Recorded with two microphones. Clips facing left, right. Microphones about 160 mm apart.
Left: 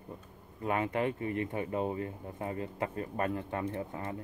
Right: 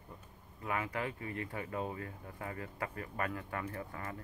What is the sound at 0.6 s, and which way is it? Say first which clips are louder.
Speech: left 7 dB; 25° left (ahead or behind).